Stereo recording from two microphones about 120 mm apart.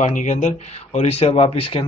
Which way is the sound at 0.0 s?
90° left.